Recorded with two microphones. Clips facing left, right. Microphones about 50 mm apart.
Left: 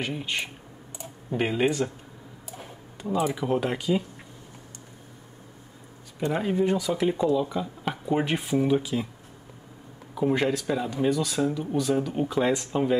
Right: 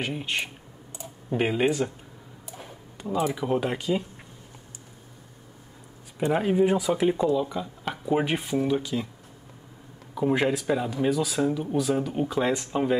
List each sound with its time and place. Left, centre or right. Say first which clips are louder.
0.0 s speech: right 1 dB; centre
6.1 s speech: right 3 dB; centre
10.1 s speech: even; centre